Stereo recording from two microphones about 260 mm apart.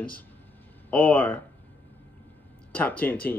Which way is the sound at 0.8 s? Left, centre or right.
Centre.